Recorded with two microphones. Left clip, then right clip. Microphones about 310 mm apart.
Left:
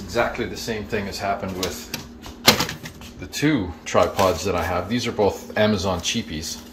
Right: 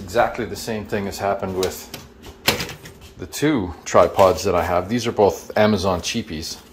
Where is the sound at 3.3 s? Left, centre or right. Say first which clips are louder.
Right 1 dB; centre.